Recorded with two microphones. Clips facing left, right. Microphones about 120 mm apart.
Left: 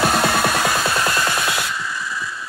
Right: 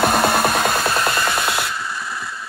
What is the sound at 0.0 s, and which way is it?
Music, 55° right (ahead or behind).